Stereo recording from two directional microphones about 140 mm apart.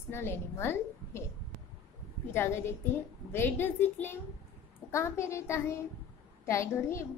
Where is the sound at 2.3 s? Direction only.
15° left (ahead or behind).